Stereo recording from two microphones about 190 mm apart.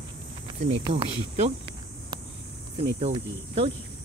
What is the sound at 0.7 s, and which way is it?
Speech, 35° right (ahead or behind).